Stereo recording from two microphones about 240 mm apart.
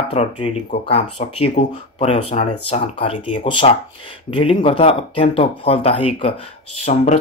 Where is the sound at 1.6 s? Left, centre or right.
Left.